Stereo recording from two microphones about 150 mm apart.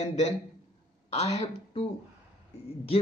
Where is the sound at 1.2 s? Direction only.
45° left (ahead or behind).